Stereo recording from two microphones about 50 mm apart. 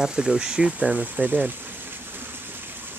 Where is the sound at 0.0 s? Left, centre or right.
Centre; by 1.5 s right.